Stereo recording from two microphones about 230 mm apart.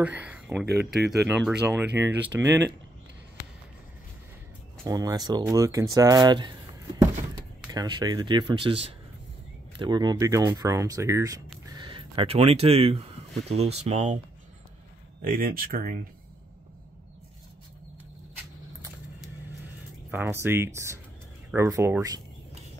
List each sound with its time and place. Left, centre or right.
0.0 s speech: centre
4.8 s speech: centre
7.7 s speech: centre
15.2 s speech: right
20.1 s speech: centre